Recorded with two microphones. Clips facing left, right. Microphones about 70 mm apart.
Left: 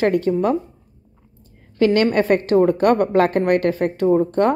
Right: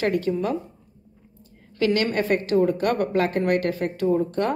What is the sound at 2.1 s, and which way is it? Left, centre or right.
A woman's voice, left.